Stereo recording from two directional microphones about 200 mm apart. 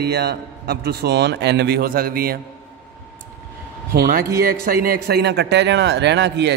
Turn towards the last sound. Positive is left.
turn(degrees=-60)  # may be behind; listen again after turning